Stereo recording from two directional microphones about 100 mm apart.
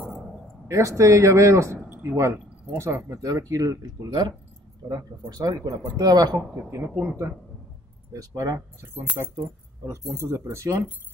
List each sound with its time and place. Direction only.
0.7 s speech: 30° right (ahead or behind)
6.3 s speech: 25° right (ahead or behind)
8.1 s speech: 35° right (ahead or behind)
8.9 s speech: 20° right (ahead or behind)